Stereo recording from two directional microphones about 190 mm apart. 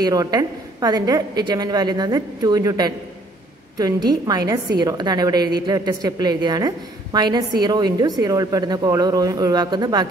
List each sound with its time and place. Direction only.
0.0 s a woman's voice: 20° right (ahead or behind)